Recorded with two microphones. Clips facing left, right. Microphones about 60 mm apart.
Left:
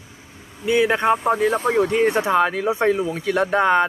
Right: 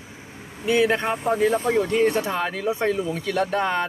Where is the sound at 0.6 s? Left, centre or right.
Centre.